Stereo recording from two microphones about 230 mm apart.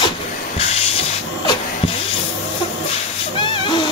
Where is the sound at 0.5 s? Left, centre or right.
Left.